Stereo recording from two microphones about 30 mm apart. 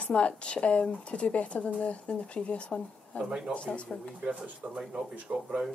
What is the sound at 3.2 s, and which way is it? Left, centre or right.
Speech, left.